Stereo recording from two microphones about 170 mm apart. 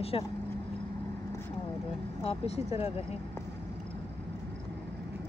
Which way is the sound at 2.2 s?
35° left (ahead or behind).